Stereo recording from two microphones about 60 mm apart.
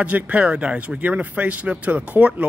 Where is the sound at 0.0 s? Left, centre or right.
Right.